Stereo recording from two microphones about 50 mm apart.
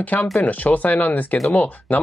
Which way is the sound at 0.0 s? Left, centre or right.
Left.